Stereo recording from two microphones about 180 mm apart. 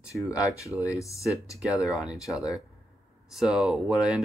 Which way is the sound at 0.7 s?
10° right (ahead or behind).